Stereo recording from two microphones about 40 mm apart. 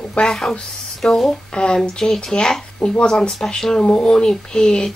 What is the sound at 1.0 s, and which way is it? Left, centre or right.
Speech, centre.